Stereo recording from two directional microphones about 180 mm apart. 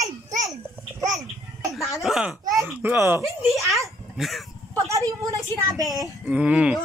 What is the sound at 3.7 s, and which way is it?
Speech, centre (ahead or behind).